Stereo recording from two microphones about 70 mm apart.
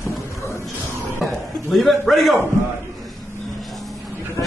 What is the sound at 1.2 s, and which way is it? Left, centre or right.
A man's voice, centre.